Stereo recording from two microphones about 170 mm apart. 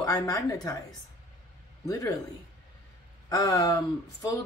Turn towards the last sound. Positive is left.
turn(degrees=20)  # may be behind; listen again after turning